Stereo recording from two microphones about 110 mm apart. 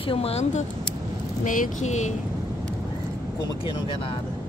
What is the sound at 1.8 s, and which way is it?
Speech, 90° left.